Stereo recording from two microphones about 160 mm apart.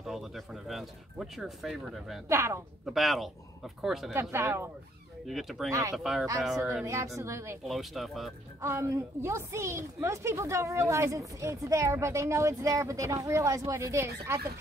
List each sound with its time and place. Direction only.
0.7 s speech: centre (ahead or behind)
2.2 s a woman's voice: 15° right (ahead or behind)
2.9 s speech: centre (ahead or behind)
4.1 s a woman's voice: 15° right (ahead or behind)
5.2 s speech: centre (ahead or behind)
5.7 s speech: 20° right (ahead or behind)
5.9 s speech: centre (ahead or behind)
7.2 s a woman's voice: 15° right (ahead or behind)
7.6 s speech: centre (ahead or behind)
8.5 s a woman's voice: 15° right (ahead or behind)